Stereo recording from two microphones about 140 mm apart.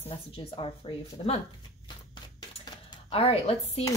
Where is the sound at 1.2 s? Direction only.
40° left (ahead or behind).